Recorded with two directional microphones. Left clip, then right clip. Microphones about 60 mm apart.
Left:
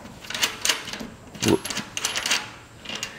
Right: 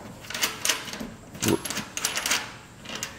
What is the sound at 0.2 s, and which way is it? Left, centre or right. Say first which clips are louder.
Typewriter: left 3 dB; centre.